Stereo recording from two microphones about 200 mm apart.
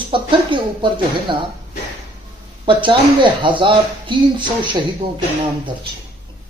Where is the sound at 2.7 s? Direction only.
25° right (ahead or behind).